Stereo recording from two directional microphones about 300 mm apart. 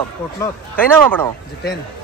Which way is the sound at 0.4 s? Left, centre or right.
Centre.